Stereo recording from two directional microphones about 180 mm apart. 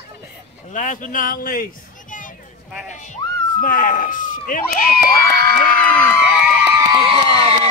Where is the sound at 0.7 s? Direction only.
45° left (ahead or behind).